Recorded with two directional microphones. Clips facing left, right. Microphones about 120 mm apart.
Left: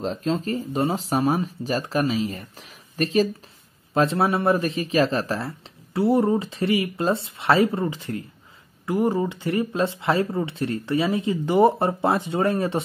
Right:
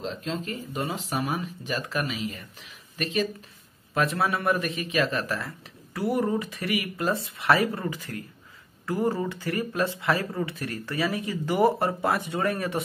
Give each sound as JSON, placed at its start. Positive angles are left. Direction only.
{"t": 0.0, "sound": "speech", "side_deg": 40}
{"t": 3.9, "sound": "speech", "side_deg": 30}